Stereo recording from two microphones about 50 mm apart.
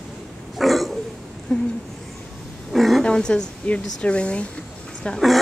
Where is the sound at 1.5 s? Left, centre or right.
Centre.